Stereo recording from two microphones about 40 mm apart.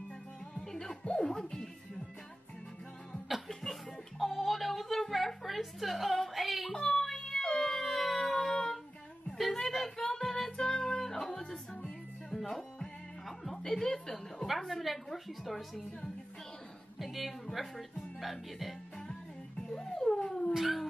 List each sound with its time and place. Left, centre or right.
0.6 s music: centre
4.2 s a sound: centre
6.9 s a sound: centre
9.4 s music: centre
13.6 s a woman's voice: centre
19.8 s music: centre
20.5 s cat: centre